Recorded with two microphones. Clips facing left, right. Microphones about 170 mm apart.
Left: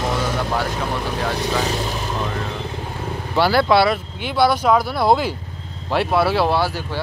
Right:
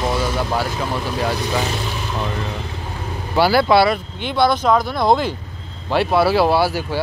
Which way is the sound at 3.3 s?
5° right (ahead or behind).